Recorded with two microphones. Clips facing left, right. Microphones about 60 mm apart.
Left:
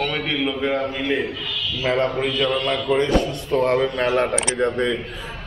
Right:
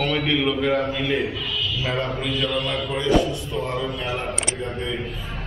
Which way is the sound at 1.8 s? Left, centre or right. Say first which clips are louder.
Left 8 dB; left.